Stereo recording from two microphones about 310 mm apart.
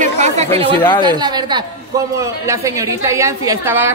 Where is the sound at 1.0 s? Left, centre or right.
Centre.